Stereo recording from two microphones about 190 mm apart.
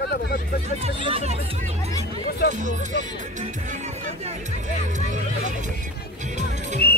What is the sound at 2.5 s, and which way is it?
Speech, 40° right (ahead or behind).